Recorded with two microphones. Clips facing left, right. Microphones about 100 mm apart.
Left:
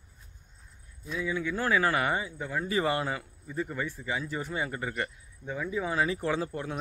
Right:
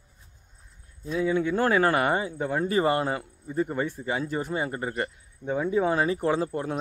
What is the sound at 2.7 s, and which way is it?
Speech, 40° right (ahead or behind).